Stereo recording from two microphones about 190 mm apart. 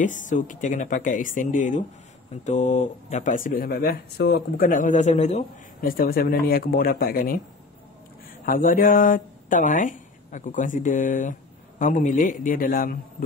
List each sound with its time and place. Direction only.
0.0 s speech: 40° left (ahead or behind)
5.8 s speech: 50° left (ahead or behind)
8.5 s speech: 45° left (ahead or behind)